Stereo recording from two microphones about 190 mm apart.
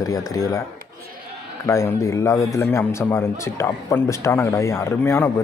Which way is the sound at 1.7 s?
15° left (ahead or behind).